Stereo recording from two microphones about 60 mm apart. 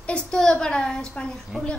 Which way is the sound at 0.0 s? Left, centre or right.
Centre.